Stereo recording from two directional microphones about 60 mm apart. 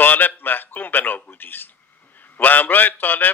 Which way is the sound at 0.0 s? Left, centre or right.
Left.